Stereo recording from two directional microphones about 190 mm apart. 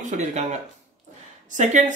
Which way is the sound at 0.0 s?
40° right (ahead or behind).